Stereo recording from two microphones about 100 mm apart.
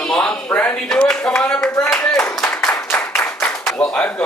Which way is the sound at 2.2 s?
10° left (ahead or behind).